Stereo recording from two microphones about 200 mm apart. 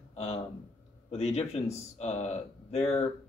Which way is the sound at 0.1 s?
30° left (ahead or behind).